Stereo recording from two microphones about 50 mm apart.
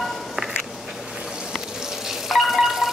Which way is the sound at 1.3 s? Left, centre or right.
Centre.